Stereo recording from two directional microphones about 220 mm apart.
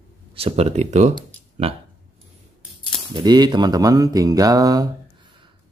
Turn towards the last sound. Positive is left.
turn(degrees=-15)  # may be behind; listen again after turning